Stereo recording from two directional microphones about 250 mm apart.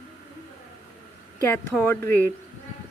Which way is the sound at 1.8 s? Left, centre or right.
Centre.